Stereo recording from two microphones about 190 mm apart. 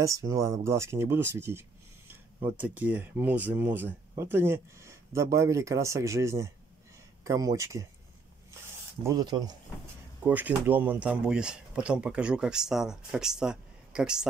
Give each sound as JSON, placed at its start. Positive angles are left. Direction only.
{"t": 0.0, "sound": "speech", "side_deg": -15}
{"t": 9.0, "sound": "speech", "side_deg": -20}
{"t": 10.2, "sound": "speech", "side_deg": -10}